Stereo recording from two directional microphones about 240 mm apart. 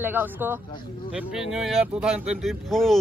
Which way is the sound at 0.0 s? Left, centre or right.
Centre.